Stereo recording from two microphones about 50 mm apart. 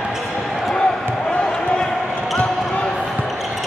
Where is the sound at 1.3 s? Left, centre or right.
Left.